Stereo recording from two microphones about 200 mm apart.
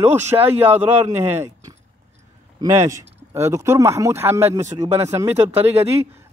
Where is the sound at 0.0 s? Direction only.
10° right (ahead or behind).